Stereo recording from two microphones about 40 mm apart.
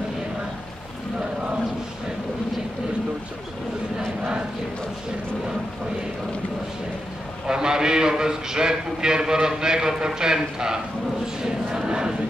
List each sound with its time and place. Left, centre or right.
7.4 s a man's voice: centre
11.4 s crowd: centre